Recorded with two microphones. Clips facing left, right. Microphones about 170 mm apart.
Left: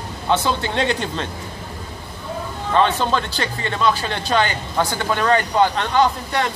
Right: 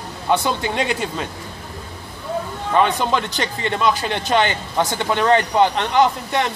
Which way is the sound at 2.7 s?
15° right (ahead or behind).